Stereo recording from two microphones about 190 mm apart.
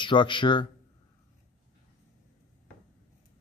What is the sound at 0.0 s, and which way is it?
Speech, 25° left (ahead or behind).